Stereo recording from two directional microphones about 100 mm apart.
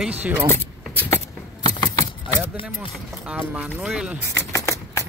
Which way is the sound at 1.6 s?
45° left (ahead or behind).